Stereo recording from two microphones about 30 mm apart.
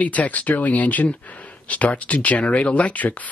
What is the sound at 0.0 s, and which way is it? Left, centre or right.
Speech, left.